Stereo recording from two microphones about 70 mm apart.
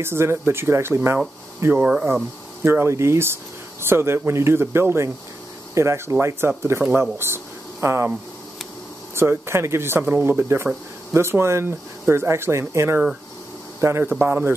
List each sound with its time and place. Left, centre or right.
0.0 s speech: right
9.1 s a man's voice: right